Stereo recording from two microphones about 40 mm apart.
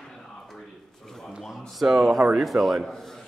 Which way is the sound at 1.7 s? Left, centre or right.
Centre.